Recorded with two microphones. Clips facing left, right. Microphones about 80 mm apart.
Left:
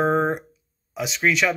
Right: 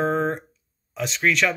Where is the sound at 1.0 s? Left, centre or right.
Centre.